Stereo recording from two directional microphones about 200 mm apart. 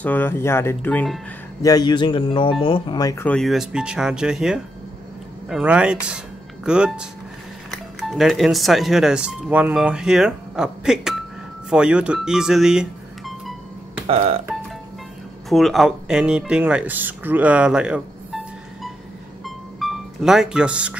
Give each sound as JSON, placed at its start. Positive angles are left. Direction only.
{"t": 0.0, "sound": "speech", "side_deg": 10}
{"t": 1.6, "sound": "speech", "side_deg": 20}
{"t": 3.3, "sound": "speech", "side_deg": 0}
{"t": 11.7, "sound": "music", "side_deg": -5}
{"t": 14.0, "sound": "speech", "side_deg": -30}
{"t": 15.5, "sound": "speech", "side_deg": 0}
{"t": 19.4, "sound": "music", "side_deg": 0}